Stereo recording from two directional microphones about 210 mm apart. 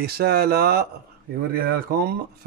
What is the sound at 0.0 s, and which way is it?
Speech, 50° right (ahead or behind).